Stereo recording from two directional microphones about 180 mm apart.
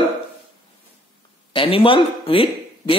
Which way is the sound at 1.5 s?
30° left (ahead or behind).